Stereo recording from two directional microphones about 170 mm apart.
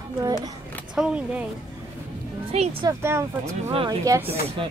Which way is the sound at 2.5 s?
40° right (ahead or behind).